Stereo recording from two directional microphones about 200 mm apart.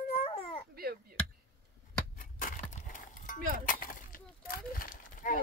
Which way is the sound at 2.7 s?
40° left (ahead or behind).